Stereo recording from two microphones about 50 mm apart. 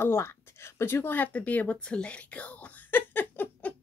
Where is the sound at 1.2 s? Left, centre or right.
Left.